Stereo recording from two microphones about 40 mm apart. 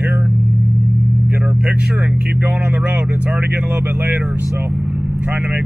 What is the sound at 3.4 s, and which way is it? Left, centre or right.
Speech, right.